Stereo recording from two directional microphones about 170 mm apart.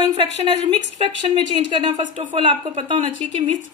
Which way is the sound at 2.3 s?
30° right (ahead or behind).